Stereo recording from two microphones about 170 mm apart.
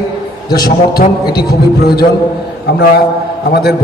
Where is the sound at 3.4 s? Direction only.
65° left (ahead or behind).